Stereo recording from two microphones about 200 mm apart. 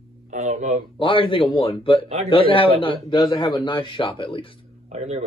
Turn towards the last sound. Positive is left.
turn(degrees=-35)  # may be behind; listen again after turning